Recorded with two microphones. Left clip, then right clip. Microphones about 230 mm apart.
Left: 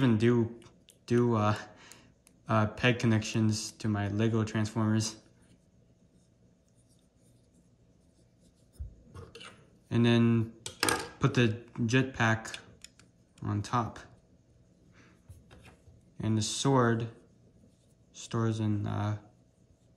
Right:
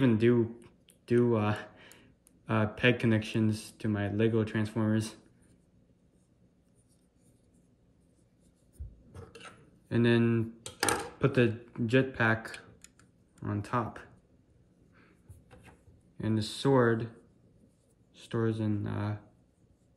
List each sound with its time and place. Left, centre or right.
0.0 s speech: centre
9.1 s a sound: centre
11.1 s speech: centre
16.2 s speech: centre
18.1 s speech: centre